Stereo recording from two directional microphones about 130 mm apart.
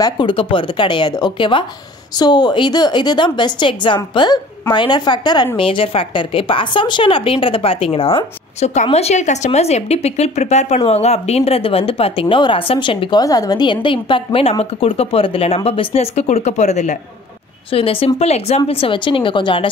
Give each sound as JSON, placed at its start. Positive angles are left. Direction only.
{"t": 0.0, "sound": "a woman's voice", "side_deg": 40}
{"t": 13.2, "sound": "a woman's voice", "side_deg": 30}
{"t": 17.6, "sound": "a woman's voice", "side_deg": 45}
{"t": 18.7, "sound": "a woman's voice", "side_deg": 45}